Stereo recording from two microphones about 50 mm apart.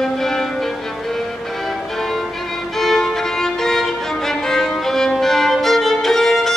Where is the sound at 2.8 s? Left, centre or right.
Centre.